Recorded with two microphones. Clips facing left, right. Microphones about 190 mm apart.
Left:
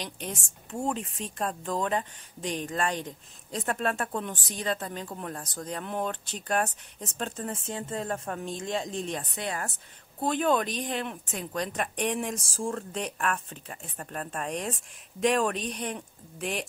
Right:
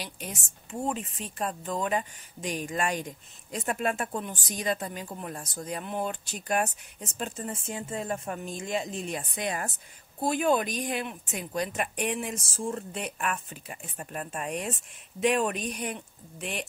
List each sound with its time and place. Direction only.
0.0 s speech: 5° right (ahead or behind)